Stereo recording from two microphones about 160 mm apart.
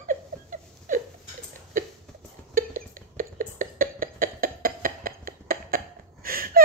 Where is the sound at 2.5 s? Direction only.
60° right (ahead or behind).